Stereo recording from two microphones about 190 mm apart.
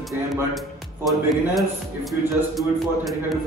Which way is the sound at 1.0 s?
Centre (ahead or behind).